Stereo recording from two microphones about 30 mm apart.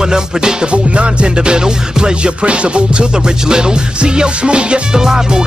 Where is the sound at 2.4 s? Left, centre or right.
Right.